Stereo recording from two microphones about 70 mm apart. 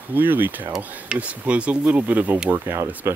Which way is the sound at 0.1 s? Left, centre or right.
Right.